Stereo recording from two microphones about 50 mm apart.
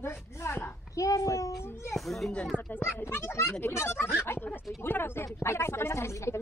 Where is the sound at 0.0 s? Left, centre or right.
Left.